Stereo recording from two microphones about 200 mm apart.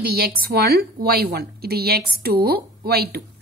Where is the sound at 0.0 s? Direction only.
50° right (ahead or behind).